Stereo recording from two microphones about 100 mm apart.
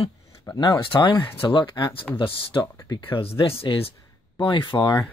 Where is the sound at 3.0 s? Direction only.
65° left (ahead or behind).